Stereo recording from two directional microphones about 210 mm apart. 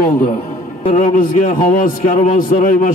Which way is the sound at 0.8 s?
35° left (ahead or behind).